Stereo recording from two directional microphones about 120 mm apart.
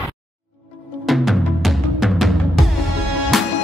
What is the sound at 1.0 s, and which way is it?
Music, centre (ahead or behind).